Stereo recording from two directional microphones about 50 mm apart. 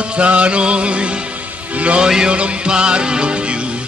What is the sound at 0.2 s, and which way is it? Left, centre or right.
Music, right.